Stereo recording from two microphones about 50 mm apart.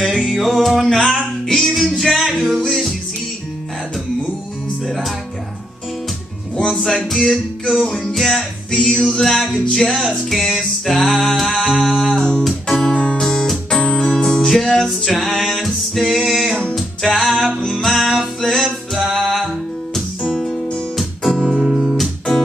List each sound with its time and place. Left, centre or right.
0.0 s music: centre
4.8 s music: centre
6.5 s music: centre
7.2 s music: centre
8.8 s music: centre
9.2 s music: centre
12.2 s music: centre
12.4 s music: centre
12.8 s music: left
17.9 s music: centre
19.2 s music: centre
20.2 s music: centre
20.9 s music: centre